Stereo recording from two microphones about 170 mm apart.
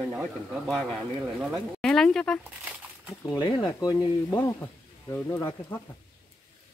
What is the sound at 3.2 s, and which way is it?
Speech, 25° left (ahead or behind).